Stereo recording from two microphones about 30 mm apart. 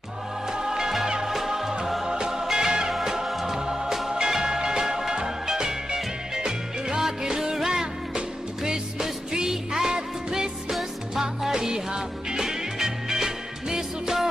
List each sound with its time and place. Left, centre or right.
0.5 s music: right
9.5 s music: centre
10.7 s music: centre
11.5 s music: right